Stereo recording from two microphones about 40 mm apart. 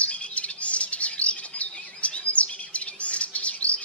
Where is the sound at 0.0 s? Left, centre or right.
Left.